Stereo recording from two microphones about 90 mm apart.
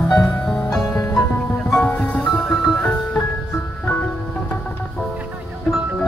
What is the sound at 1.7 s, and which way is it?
Music, 25° left (ahead or behind).